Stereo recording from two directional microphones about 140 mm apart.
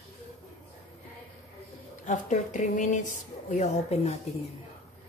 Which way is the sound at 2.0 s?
60° left (ahead or behind).